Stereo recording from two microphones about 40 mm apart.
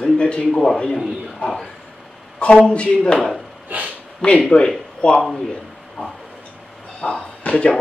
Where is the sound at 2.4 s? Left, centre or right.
Left.